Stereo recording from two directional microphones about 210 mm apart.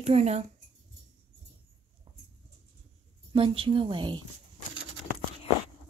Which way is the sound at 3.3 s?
25° right (ahead or behind).